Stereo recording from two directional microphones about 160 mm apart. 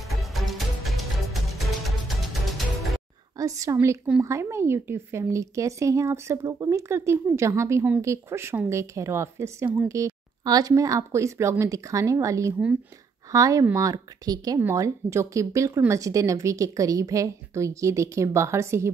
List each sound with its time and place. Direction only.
0.2 s music: centre (ahead or behind)
3.3 s a woman's voice: 20° right (ahead or behind)